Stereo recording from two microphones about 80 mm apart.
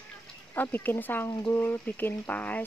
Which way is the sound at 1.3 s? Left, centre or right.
Left.